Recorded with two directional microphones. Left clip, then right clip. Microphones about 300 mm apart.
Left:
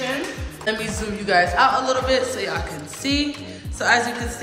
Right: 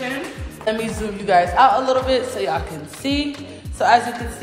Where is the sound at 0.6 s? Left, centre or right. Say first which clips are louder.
Right 3 dB; centre.